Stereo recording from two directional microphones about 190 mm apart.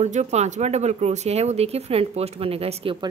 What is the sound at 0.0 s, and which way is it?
Speech, 35° right (ahead or behind).